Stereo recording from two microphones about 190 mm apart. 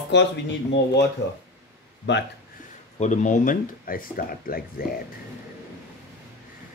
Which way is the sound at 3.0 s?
40° left (ahead or behind).